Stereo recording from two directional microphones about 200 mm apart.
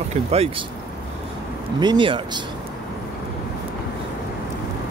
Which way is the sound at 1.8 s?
25° right (ahead or behind).